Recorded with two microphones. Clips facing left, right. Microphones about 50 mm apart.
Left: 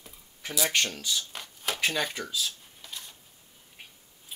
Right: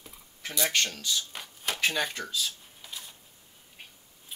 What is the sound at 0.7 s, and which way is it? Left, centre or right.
Speech, centre.